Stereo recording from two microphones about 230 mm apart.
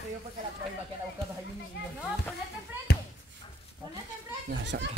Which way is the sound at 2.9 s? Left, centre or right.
Left.